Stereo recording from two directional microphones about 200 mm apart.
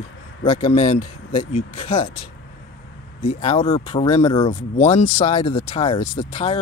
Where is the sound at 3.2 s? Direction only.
30° left (ahead or behind).